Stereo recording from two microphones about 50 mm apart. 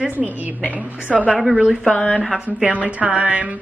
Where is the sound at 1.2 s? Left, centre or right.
Centre.